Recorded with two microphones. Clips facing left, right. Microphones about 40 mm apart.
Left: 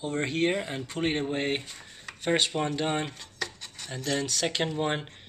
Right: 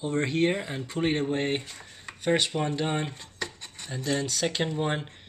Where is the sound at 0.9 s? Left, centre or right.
Left.